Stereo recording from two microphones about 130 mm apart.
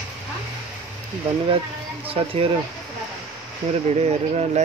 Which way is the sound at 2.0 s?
45° right (ahead or behind).